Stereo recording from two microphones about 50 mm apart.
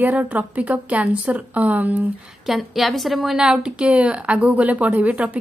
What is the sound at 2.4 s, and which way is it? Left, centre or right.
Speech, centre.